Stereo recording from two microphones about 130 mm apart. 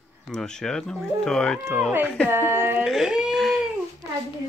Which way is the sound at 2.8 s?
Centre (ahead or behind).